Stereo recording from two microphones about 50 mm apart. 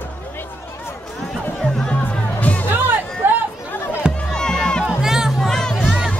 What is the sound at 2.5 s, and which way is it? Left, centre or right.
Music, left.